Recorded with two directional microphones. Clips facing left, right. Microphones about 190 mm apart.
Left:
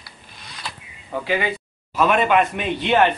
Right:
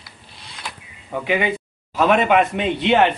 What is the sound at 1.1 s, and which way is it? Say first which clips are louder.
Speech: right 2 dB; 15° right (ahead or behind).